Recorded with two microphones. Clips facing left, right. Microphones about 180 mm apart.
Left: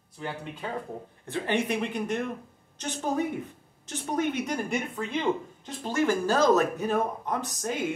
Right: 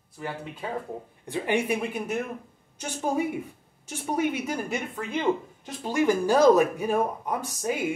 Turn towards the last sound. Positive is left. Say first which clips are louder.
# right 2 dB
turn(degrees=-10)  # may be behind; listen again after turning